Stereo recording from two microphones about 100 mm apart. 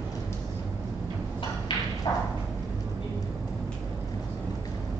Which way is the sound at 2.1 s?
35° left (ahead or behind).